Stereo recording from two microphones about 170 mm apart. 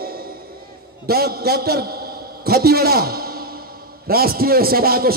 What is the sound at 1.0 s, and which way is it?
A man's voice, 65° right (ahead or behind).